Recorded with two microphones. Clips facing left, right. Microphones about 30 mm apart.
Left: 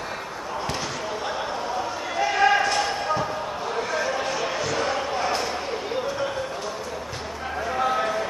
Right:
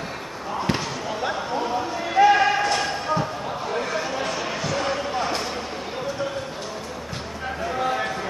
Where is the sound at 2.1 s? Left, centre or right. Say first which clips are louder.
Right 9 dB; centre.